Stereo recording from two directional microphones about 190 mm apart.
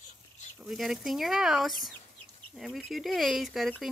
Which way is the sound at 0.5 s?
Centre (ahead or behind).